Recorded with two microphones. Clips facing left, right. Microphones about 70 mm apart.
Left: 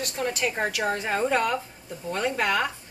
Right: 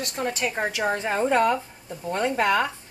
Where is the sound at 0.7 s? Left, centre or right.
Right.